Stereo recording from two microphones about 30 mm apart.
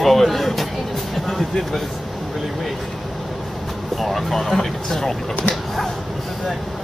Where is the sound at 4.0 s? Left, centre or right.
Centre.